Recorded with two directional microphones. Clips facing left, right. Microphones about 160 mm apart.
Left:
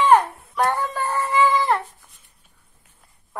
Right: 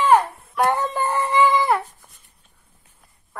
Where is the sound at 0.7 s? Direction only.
20° right (ahead or behind).